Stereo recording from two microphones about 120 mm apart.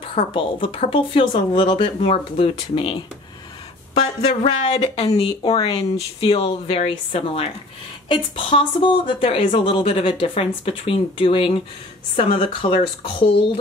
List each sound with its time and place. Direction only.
0.1 s speech: 45° left (ahead or behind)